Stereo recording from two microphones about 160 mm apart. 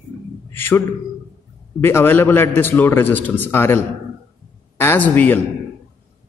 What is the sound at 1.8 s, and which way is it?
A man's voice, 15° left (ahead or behind).